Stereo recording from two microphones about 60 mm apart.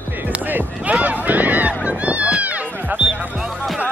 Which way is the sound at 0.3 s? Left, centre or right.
Right.